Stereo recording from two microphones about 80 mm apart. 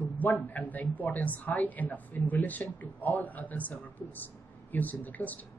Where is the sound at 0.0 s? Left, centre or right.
Left.